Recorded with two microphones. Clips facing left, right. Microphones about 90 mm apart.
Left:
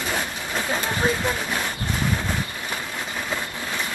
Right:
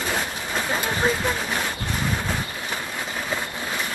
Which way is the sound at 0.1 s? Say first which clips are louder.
Right 1 dB; 5° right (ahead or behind).